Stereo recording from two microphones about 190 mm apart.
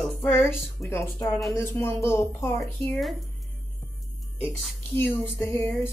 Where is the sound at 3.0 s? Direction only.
Centre (ahead or behind).